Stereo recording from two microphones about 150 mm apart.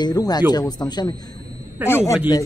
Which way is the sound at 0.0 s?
25° left (ahead or behind).